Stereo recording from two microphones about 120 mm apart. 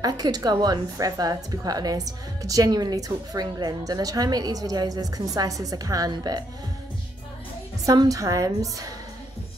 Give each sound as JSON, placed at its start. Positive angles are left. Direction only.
{"t": 0.0, "sound": "a woman's voice", "side_deg": -30}
{"t": 7.8, "sound": "a woman's voice", "side_deg": -30}